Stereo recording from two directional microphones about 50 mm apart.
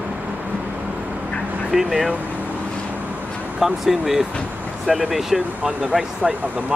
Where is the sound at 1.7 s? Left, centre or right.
Centre.